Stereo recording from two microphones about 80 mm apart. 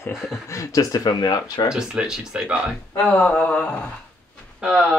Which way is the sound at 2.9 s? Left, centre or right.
Centre.